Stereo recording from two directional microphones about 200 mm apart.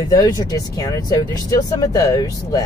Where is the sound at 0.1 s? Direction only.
20° left (ahead or behind).